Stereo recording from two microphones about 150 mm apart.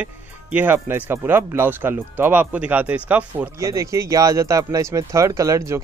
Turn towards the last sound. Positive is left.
turn(degrees=-20)  # may be behind; listen again after turning